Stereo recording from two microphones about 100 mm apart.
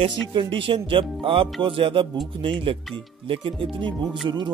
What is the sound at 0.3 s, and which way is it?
Speech, 60° right (ahead or behind).